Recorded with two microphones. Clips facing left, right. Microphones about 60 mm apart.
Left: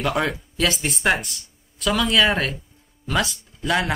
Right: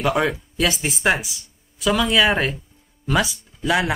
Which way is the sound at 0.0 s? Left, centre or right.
Centre.